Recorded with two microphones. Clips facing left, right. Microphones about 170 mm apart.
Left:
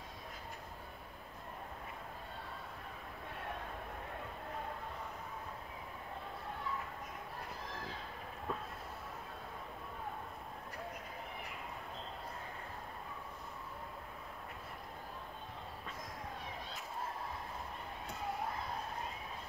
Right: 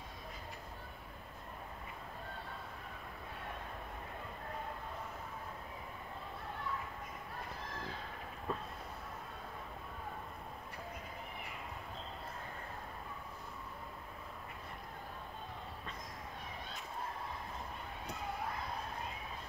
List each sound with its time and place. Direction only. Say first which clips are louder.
8.5 s vehicle: right 1 dB; centre (ahead or behind)